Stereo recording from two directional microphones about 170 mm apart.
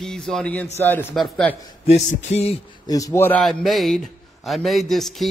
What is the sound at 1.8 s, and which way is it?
Music, 40° left (ahead or behind).